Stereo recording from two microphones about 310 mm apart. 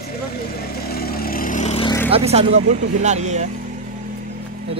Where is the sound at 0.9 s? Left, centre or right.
Left; by 2.1 s centre.